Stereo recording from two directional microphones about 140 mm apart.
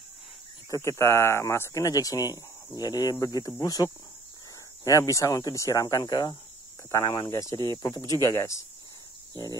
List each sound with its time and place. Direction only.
0.8 s speech: 20° left (ahead or behind)